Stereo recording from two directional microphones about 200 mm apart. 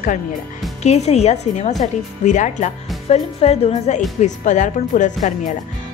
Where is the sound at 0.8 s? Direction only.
35° left (ahead or behind).